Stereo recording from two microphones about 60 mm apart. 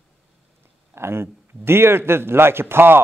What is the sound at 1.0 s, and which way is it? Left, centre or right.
A man's voice, right.